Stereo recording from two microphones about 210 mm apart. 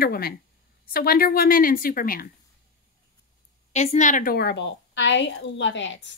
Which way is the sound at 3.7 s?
30° left (ahead or behind).